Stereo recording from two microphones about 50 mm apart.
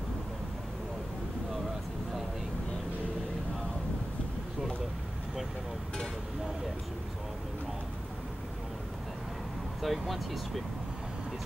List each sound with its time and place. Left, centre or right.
9.8 s speech: centre